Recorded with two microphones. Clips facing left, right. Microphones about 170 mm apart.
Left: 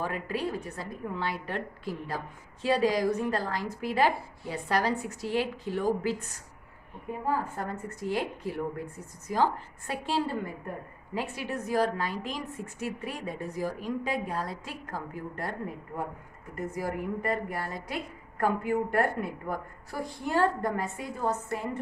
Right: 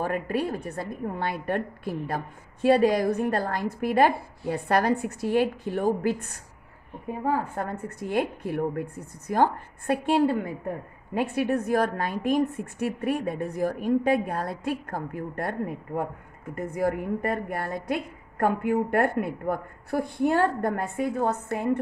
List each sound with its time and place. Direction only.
0.0 s a woman's voice: 55° right (ahead or behind)
7.5 s a woman's voice: 55° right (ahead or behind)
16.7 s a woman's voice: 60° right (ahead or behind)